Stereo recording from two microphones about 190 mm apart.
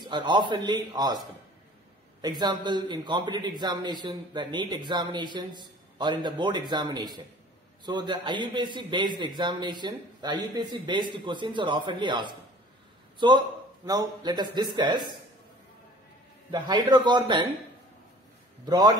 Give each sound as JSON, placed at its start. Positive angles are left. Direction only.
{"t": 0.0, "sound": "a man's voice", "side_deg": -25}
{"t": 2.2, "sound": "a man's voice", "side_deg": -20}
{"t": 16.4, "sound": "a man's voice", "side_deg": -25}
{"t": 18.7, "sound": "a man's voice", "side_deg": -20}